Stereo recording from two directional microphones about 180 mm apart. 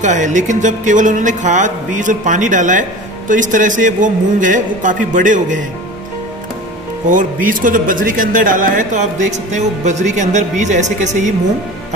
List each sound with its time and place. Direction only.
0.0 s speech: 45° right (ahead or behind)
7.1 s speech: 50° right (ahead or behind)